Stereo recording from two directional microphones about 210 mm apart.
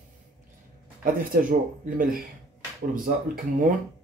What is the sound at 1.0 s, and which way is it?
Speech, 40° right (ahead or behind).